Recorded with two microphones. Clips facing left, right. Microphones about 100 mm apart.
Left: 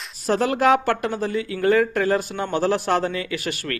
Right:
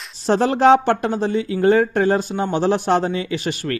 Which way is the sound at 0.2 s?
30° right (ahead or behind).